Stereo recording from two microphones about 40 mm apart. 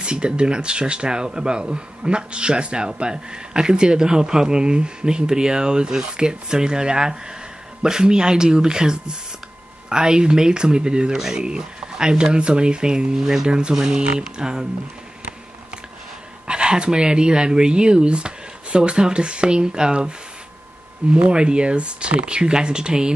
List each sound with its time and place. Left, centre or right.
0.0 s speech: right
11.1 s speech: centre
13.2 s speech: centre
13.5 s speech: right
16.4 s speech: right
21.3 s speech: right